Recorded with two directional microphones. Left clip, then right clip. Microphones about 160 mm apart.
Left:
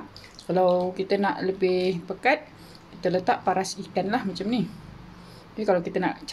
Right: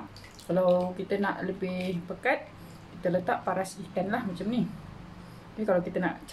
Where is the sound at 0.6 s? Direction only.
65° left (ahead or behind).